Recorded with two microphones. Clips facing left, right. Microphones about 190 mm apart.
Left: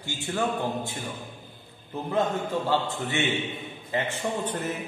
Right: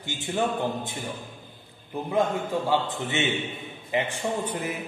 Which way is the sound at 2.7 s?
20° right (ahead or behind).